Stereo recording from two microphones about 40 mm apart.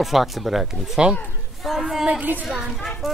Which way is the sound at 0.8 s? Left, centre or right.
Centre.